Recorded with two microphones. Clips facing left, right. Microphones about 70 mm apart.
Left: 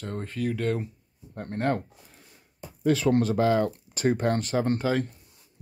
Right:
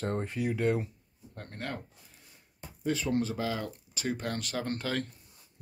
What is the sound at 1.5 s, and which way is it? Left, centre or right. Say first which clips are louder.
Speech: left 12 dB; left.